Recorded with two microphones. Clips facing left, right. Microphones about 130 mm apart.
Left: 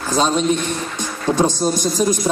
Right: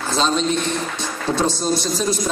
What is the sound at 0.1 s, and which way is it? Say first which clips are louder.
A man's voice: left 3 dB; 15° left (ahead or behind).